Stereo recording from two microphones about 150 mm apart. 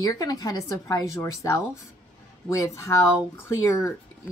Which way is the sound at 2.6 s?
20° left (ahead or behind).